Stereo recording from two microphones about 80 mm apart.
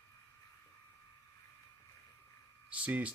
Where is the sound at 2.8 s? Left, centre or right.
Centre.